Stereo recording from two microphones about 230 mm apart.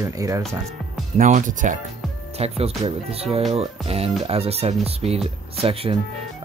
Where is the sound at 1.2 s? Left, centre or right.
Right.